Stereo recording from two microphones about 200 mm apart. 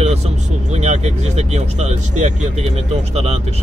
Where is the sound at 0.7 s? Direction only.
35° right (ahead or behind).